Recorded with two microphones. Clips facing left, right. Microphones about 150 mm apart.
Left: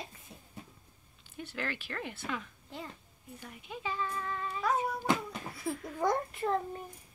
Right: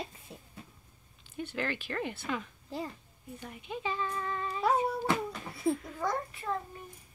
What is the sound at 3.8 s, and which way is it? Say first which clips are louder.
Speech: right 1 dB; centre (ahead or behind).